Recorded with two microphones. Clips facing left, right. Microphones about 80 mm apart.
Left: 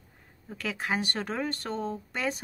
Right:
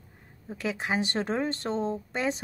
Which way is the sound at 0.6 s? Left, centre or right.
Centre.